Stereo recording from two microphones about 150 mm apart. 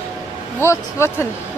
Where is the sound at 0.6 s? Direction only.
15° left (ahead or behind).